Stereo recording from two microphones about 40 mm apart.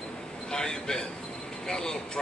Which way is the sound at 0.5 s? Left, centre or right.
Centre.